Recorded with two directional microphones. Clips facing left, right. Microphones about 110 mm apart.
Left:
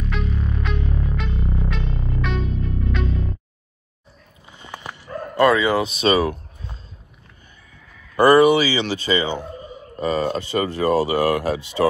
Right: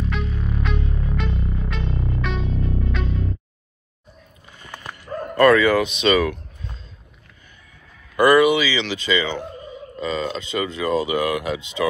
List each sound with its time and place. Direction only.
0.1 s music: centre (ahead or behind)
4.5 s dog: 20° left (ahead or behind)
5.9 s speech: 35° left (ahead or behind)
8.2 s speech: 35° left (ahead or behind)